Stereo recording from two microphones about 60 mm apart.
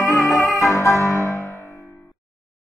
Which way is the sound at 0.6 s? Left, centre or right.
Left.